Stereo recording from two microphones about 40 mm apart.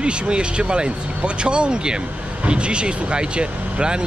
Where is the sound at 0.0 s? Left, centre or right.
Right.